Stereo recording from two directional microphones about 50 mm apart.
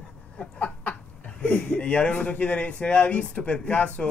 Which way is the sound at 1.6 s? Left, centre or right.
Left.